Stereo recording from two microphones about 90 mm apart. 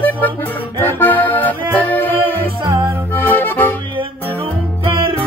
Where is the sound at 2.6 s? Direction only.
35° right (ahead or behind).